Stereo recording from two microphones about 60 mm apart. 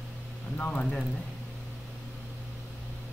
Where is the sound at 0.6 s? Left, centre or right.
Left.